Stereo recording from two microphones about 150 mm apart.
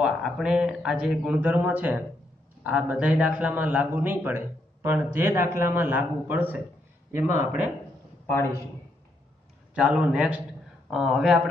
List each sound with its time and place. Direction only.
0.0 s a man's voice: 5° right (ahead or behind)
9.8 s a man's voice: 5° right (ahead or behind)